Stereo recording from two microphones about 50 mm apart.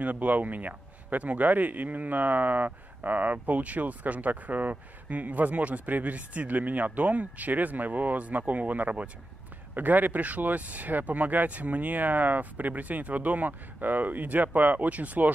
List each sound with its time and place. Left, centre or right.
0.0 s speech: right